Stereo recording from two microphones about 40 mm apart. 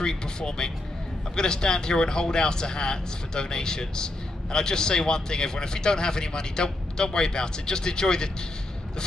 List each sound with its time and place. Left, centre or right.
0.0 s speech: centre